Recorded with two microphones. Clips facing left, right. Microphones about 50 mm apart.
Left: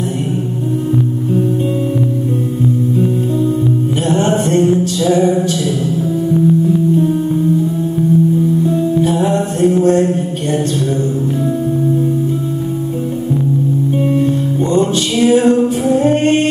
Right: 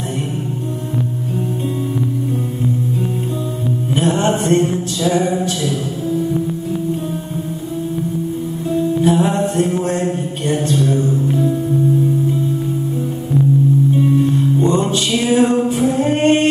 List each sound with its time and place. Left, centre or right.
4.0 s music: right
9.1 s mantra: centre
14.6 s music: right
16.0 s a capella: right